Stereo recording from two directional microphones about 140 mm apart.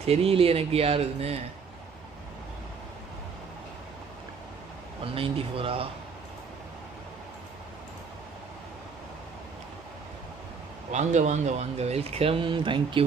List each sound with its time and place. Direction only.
0.0 s speech: 45° right (ahead or behind)
5.0 s speech: 40° right (ahead or behind)
10.9 s speech: 55° right (ahead or behind); by 13.0 s 35° right (ahead or behind)